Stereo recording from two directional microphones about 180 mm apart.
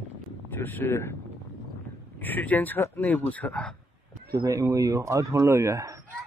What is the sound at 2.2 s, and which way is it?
Speech, 10° left (ahead or behind).